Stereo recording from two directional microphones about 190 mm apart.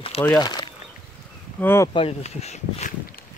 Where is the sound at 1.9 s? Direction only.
30° left (ahead or behind).